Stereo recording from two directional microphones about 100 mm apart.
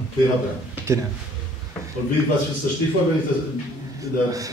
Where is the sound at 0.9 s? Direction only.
30° right (ahead or behind).